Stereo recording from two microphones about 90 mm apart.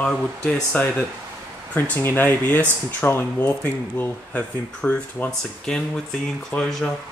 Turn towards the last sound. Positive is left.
turn(degrees=5)  # may be behind; listen again after turning